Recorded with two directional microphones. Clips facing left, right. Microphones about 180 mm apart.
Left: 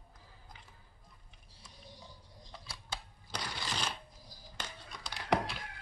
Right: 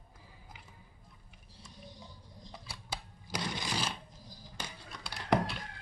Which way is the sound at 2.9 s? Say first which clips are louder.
Right 3 dB; 10° right (ahead or behind).